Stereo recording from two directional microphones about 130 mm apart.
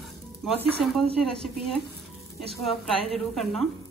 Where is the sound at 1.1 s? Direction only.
5° left (ahead or behind).